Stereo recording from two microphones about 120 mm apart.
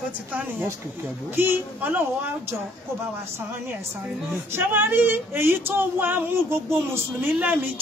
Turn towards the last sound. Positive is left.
turn(degrees=-15)  # may be behind; listen again after turning